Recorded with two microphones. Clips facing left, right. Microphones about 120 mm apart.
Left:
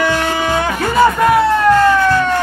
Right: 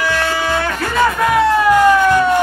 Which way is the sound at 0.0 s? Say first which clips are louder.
Left 2 dB; 20° left (ahead or behind).